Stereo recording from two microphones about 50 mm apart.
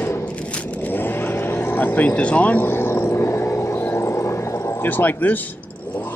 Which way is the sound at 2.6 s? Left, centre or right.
Left.